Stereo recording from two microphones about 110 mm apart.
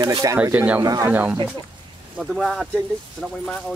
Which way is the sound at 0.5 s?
15° right (ahead or behind).